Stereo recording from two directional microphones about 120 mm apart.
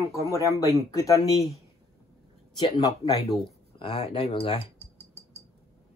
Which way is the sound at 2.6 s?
30° left (ahead or behind).